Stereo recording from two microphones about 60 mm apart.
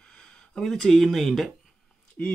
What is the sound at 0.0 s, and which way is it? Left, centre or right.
Speech, centre.